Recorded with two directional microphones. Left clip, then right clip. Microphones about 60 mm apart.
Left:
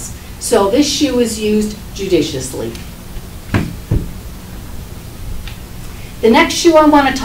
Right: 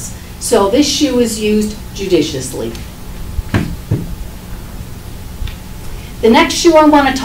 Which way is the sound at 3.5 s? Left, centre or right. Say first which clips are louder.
Right 1 dB; left.